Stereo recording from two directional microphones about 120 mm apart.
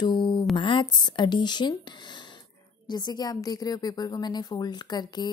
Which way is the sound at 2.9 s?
35° left (ahead or behind).